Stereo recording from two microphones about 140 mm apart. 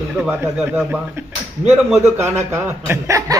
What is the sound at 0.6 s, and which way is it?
Speech, 10° right (ahead or behind).